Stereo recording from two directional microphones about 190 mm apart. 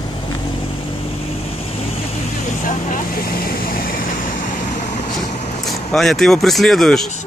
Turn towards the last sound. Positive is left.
turn(degrees=0)  # may be behind; listen again after turning